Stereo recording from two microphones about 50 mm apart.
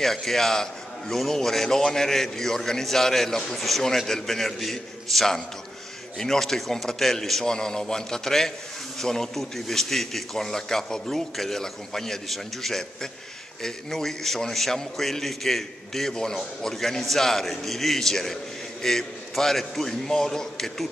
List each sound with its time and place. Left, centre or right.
0.0 s a man's voice: centre